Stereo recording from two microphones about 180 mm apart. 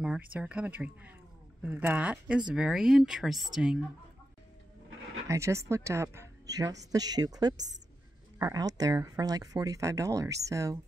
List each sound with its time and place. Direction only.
0.0 s speech: 5° right (ahead or behind)
5.3 s speech: 15° right (ahead or behind)